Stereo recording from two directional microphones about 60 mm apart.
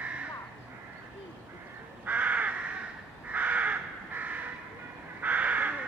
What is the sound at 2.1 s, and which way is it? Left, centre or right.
Crow, right.